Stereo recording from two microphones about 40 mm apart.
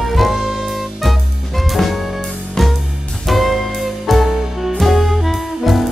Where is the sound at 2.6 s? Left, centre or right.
Centre.